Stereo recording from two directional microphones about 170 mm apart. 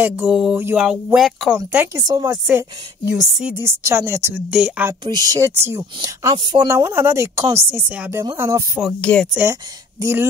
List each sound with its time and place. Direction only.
0.0 s speech: 10° right (ahead or behind)
2.0 s speech: 25° right (ahead or behind)
2.2 s a woman's voice: 10° right (ahead or behind)
5.0 s a woman's voice: 20° right (ahead or behind)
9.0 s speech: 5° left (ahead or behind)
9.4 s a woman's voice: 15° right (ahead or behind)